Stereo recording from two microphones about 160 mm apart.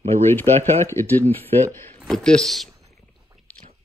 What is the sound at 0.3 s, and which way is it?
Speech, 15° left (ahead or behind).